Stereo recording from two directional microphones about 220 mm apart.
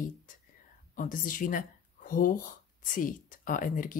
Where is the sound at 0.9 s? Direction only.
35° left (ahead or behind).